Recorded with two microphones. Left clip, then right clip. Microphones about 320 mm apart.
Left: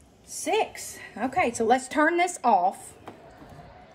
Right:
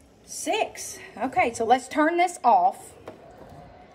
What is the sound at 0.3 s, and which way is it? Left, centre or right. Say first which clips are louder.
A woman's voice: even; centre.